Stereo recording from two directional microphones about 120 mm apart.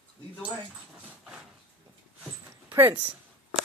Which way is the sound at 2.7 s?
15° right (ahead or behind).